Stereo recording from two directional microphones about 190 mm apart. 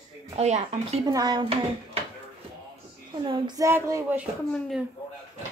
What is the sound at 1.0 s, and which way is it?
Speech, 20° right (ahead or behind).